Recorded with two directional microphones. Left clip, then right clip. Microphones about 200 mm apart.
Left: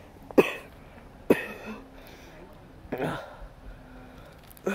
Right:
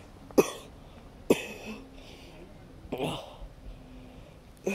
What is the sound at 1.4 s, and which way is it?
Cough, 50° left (ahead or behind).